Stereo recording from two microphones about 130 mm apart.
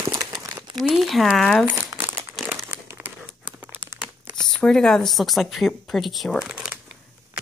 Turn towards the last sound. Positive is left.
turn(degrees=-5)  # may be behind; listen again after turning